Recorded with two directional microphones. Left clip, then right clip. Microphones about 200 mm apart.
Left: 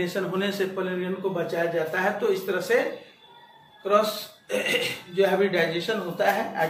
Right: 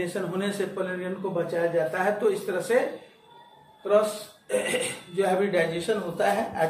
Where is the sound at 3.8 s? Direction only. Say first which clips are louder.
Even; centre (ahead or behind).